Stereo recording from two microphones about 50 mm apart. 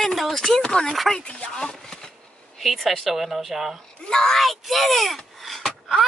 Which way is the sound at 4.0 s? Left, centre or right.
Centre.